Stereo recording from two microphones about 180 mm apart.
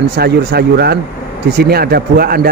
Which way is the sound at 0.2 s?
60° right (ahead or behind).